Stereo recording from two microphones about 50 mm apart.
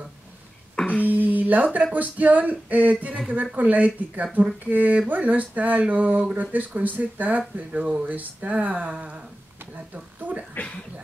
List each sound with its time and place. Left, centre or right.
0.8 s a sound: left
1.1 s music: right
2.0 s speech: right
9.9 s speech: right
10.5 s gargling: left